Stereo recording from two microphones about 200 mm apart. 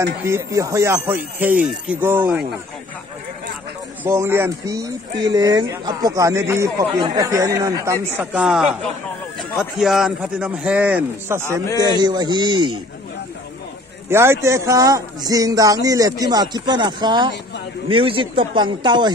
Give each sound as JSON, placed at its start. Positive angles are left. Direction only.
{"t": 0.2, "sound": "speech", "side_deg": -15}
{"t": 4.0, "sound": "a man's voice", "side_deg": -10}
{"t": 11.6, "sound": "a man's voice", "side_deg": 15}
{"t": 11.9, "sound": "a man's voice", "side_deg": -20}
{"t": 14.0, "sound": "a man's voice", "side_deg": -10}